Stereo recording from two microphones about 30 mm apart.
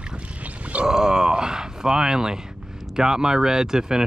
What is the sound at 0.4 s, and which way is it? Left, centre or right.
Grunt, right.